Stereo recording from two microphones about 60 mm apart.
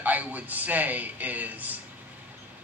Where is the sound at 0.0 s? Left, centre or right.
Right.